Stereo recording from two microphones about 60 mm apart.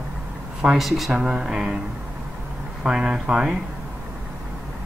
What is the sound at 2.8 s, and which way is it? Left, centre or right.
Speech, centre.